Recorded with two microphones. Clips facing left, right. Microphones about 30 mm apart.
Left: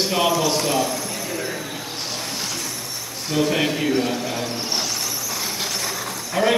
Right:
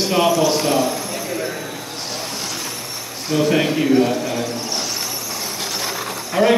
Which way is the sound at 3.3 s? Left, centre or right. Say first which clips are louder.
Right 3 dB; centre.